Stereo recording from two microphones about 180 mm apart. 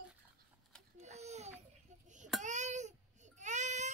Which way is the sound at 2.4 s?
40° right (ahead or behind).